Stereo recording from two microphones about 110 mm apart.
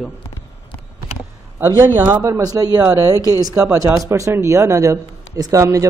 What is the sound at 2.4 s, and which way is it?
A man's voice, 35° right (ahead or behind).